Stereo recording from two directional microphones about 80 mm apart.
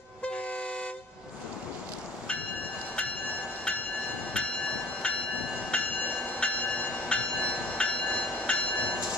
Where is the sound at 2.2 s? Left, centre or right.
Centre.